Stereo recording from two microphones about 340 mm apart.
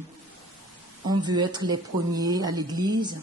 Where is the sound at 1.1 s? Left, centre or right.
Centre.